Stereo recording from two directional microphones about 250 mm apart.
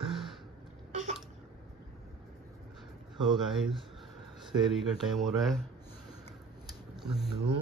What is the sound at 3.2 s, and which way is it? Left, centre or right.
Speech, centre.